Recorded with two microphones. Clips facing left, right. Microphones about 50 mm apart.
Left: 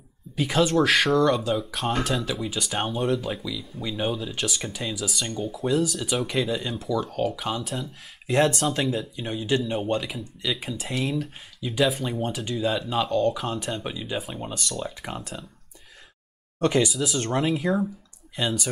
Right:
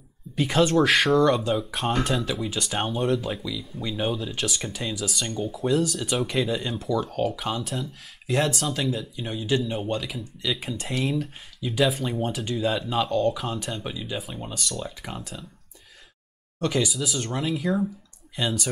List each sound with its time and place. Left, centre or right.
0.4 s speech: centre
8.5 s speech: centre
8.8 s speech: centre
16.5 s speech: left
17.4 s speech: centre